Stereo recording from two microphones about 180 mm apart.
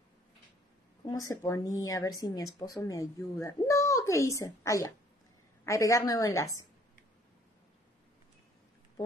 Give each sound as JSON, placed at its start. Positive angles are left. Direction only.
{"t": 1.0, "sound": "a woman's voice", "side_deg": 20}